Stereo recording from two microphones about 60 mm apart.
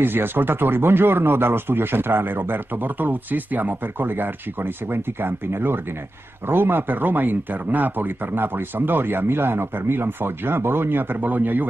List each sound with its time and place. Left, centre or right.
0.0 s speech: right